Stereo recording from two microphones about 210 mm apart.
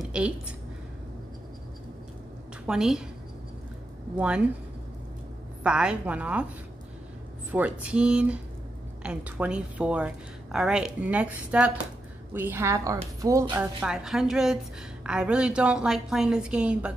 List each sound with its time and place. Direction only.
0.0 s a sound: 5° right (ahead or behind)
2.6 s a woman's voice: 5° right (ahead or behind)
4.2 s a woman's voice: 5° right (ahead or behind)
5.6 s a woman's voice: 5° right (ahead or behind)
7.5 s a woman's voice: 5° right (ahead or behind)